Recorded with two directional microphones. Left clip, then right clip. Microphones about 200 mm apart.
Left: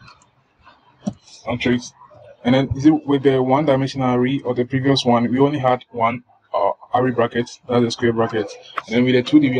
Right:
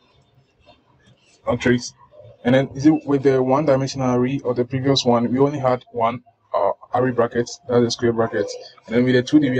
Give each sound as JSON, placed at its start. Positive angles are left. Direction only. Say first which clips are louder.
{"t": 1.4, "sound": "speech", "louder": "right 2 dB", "side_deg": -20}
{"t": 6.5, "sound": "a sound", "louder": "left 1 dB", "side_deg": 5}
{"t": 6.9, "sound": "speech", "louder": "left 1 dB", "side_deg": -10}